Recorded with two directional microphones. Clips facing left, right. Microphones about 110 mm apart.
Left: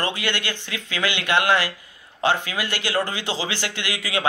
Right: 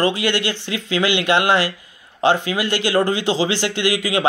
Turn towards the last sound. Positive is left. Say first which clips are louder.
# right 8 dB
turn(degrees=-20)  # may be behind; listen again after turning